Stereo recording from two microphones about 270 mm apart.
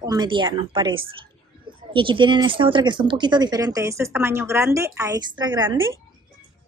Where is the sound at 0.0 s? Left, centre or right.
Centre.